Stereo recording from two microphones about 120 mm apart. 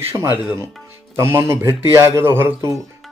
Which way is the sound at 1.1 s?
20° right (ahead or behind).